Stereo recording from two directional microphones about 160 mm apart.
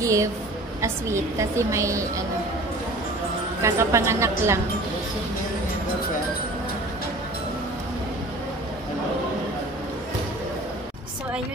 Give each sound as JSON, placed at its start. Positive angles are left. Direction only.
{"t": 0.0, "sound": "a woman's voice", "side_deg": -20}
{"t": 3.6, "sound": "a woman's voice", "side_deg": -20}